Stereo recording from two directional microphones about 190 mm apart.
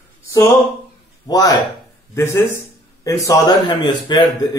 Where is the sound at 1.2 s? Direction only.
20° left (ahead or behind).